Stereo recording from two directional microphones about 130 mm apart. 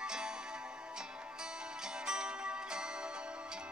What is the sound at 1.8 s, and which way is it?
Music, 5° right (ahead or behind).